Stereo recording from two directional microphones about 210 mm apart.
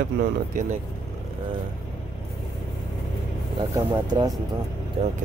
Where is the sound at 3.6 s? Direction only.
20° right (ahead or behind).